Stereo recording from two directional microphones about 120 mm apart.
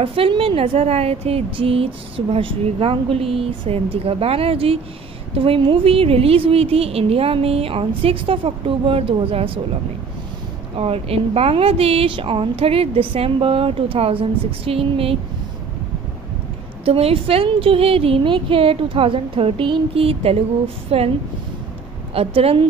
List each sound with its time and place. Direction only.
0.0 s a woman's voice: 50° right (ahead or behind)
10.8 s a woman's voice: 55° right (ahead or behind)
16.8 s a woman's voice: 55° right (ahead or behind)
22.1 s a woman's voice: 55° right (ahead or behind)